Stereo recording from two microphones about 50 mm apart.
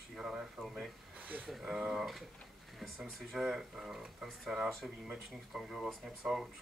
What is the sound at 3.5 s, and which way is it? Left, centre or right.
Speech, centre.